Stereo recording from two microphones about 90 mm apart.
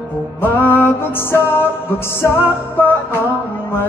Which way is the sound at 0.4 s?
20° left (ahead or behind).